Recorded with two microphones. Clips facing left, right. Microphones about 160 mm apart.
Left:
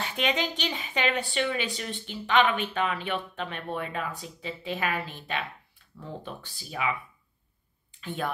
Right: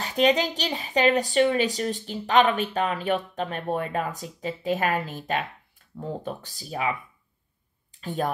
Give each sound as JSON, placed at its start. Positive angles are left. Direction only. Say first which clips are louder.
{"t": 0.0, "sound": "speech", "louder": "right 7 dB", "side_deg": -40}
{"t": 8.0, "sound": "speech", "louder": "right 5 dB", "side_deg": -40}